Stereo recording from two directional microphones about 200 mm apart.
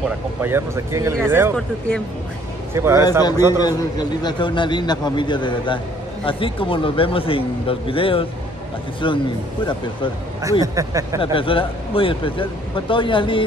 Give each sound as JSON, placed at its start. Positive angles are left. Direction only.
{"t": 0.4, "sound": "speech", "side_deg": -10}
{"t": 2.7, "sound": "speech", "side_deg": -10}
{"t": 3.1, "sound": "a man's voice", "side_deg": 20}
{"t": 10.6, "sound": "speech", "side_deg": -15}
{"t": 11.3, "sound": "a man's voice", "side_deg": 25}